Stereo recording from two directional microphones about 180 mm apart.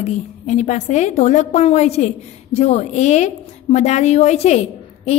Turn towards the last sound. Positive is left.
turn(degrees=35)  # may be behind; listen again after turning